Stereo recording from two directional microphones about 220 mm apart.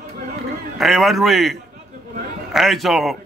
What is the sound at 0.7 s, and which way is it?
Speech, centre (ahead or behind).